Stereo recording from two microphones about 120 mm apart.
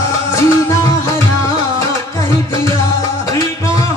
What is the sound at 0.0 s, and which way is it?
Music, 25° left (ahead or behind).